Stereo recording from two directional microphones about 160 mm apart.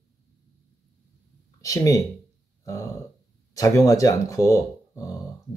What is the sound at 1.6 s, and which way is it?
Speech, 20° left (ahead or behind).